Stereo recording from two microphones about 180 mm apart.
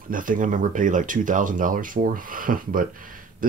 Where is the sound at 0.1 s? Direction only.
50° right (ahead or behind).